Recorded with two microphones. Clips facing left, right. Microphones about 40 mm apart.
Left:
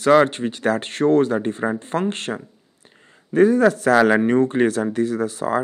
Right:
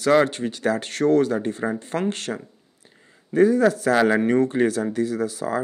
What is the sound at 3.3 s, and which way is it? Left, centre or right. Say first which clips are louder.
Speech: left 2 dB; left.